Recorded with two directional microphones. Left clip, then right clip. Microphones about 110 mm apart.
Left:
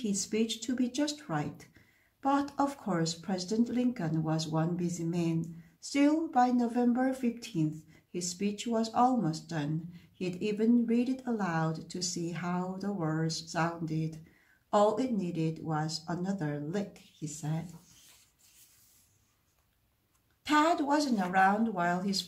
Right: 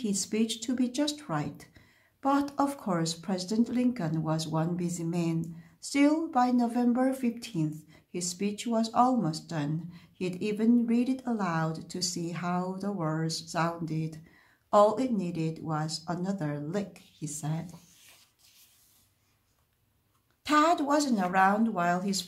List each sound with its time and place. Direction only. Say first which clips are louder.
0.0 s speech: right 1 dB; 30° right (ahead or behind)
20.4 s speech: right 2 dB; 35° right (ahead or behind)